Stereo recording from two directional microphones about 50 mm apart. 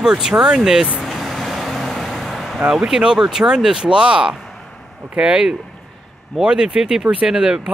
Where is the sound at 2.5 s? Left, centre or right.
Centre.